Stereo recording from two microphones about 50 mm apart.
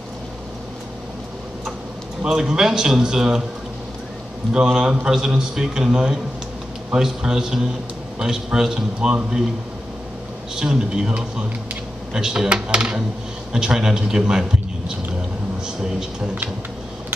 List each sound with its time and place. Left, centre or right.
2.2 s a man's voice: centre
4.6 s a man's voice: centre
10.5 s a man's voice: centre
15.6 s speech: centre